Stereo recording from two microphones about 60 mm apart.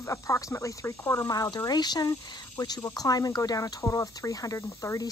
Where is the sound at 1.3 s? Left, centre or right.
Left.